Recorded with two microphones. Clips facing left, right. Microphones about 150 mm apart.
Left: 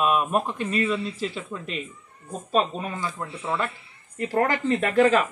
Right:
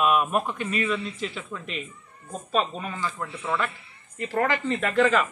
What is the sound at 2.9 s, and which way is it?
Speech, 15° left (ahead or behind).